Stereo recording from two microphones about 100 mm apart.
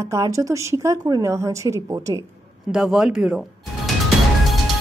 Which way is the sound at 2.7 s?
5° right (ahead or behind).